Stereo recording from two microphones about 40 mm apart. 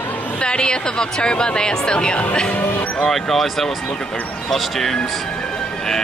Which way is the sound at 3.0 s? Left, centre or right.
Centre.